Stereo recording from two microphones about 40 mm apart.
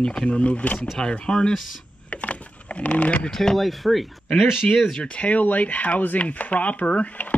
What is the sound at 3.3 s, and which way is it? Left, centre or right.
Speech, centre.